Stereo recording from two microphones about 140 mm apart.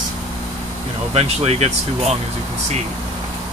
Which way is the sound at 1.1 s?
45° right (ahead or behind).